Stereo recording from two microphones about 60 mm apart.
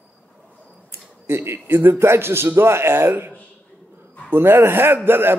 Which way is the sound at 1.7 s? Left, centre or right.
Right.